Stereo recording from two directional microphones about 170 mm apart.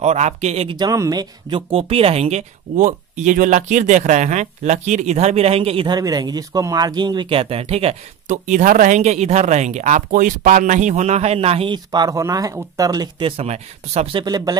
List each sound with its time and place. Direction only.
0.0 s speech: 40° right (ahead or behind); by 1.6 s 20° right (ahead or behind)
1.7 s speech: 35° right (ahead or behind)
13.4 s speech: 35° right (ahead or behind)
14.2 s speech: 25° right (ahead or behind)